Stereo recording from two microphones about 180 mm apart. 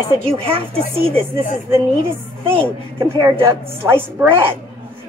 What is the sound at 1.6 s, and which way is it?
Speech, 15° right (ahead or behind).